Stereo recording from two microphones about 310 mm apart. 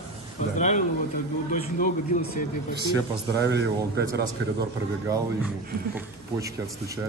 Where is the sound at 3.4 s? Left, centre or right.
Right.